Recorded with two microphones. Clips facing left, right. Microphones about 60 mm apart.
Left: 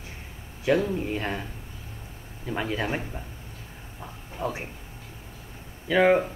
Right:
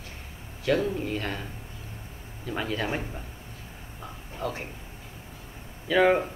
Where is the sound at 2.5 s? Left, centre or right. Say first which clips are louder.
Left 1 dB; centre.